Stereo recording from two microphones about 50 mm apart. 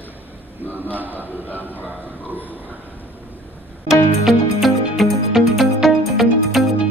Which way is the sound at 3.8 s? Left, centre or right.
Centre.